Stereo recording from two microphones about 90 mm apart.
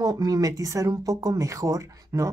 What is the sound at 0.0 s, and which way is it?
Speech, 45° right (ahead or behind).